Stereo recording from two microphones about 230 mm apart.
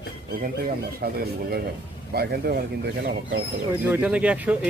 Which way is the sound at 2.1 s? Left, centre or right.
Right.